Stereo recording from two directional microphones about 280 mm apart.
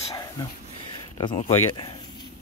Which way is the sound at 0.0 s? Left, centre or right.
Centre.